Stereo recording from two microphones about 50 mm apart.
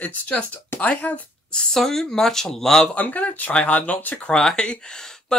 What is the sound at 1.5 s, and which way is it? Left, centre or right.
Speech, centre.